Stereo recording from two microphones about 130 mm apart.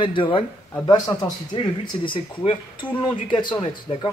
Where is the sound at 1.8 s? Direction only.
40° left (ahead or behind).